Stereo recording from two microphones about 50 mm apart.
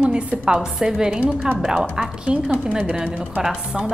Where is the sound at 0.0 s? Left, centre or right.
Centre.